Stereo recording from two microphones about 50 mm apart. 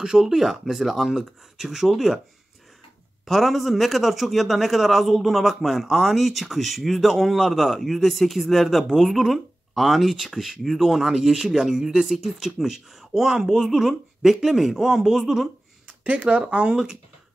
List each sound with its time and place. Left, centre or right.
0.0 s a man's voice: centre
3.3 s a man's voice: centre
16.0 s speech: right